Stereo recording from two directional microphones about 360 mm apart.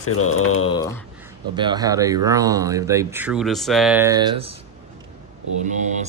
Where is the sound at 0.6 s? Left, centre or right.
Centre.